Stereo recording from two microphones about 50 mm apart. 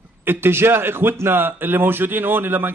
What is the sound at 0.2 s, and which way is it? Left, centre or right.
A man's voice, right.